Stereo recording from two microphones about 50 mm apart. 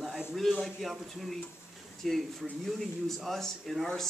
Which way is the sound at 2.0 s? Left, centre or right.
Centre.